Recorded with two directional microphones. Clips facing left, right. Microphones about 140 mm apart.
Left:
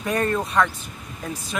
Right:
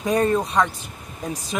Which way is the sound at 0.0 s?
15° right (ahead or behind).